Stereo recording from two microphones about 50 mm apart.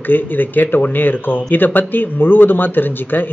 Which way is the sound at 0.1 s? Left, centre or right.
Left.